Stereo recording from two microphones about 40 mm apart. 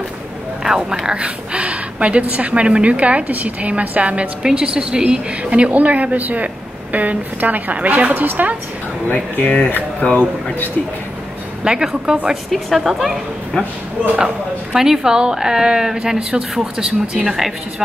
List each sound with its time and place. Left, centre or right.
0.7 s a woman's voice: centre; by 4.3 s right
4.4 s a woman's voice: right
5.4 s a woman's voice: right
9.1 s speech: left
11.6 s a woman's voice: centre
12.4 s speech: centre
14.1 s a woman's voice: right